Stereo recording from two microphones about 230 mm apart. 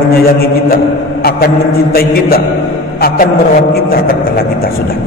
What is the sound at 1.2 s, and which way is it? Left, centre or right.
A man's voice, left.